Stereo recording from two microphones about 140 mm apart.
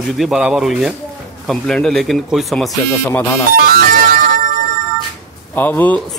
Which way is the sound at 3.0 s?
15° left (ahead or behind).